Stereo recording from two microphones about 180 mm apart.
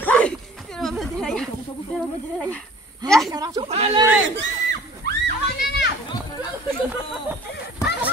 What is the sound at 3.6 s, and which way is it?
Speech, 35° right (ahead or behind).